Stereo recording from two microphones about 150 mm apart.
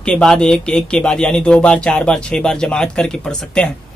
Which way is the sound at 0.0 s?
5° left (ahead or behind).